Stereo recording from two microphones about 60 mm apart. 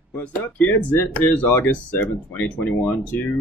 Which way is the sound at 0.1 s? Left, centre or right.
Left.